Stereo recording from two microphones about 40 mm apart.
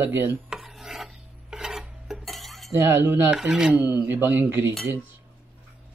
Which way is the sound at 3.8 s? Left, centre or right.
Right.